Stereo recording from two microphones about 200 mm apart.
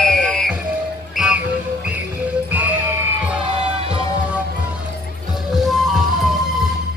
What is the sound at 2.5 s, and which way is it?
Music, 10° right (ahead or behind).